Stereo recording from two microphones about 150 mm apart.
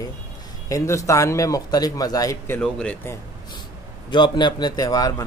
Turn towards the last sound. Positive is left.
turn(degrees=25)  # may be behind; listen again after turning